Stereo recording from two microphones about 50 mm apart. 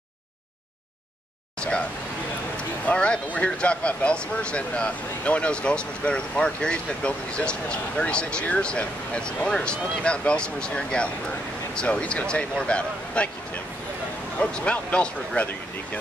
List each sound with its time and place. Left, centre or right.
1.6 s speech: centre
14.4 s speech: left